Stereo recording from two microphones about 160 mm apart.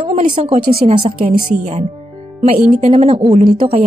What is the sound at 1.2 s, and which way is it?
A woman's voice, 45° right (ahead or behind).